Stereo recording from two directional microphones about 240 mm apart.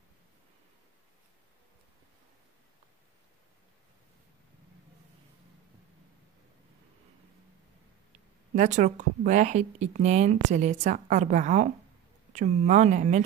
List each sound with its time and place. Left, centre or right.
8.5 s speech: right